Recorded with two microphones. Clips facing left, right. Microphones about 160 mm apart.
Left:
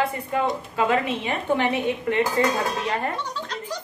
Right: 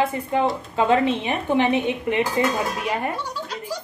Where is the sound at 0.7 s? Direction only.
30° right (ahead or behind).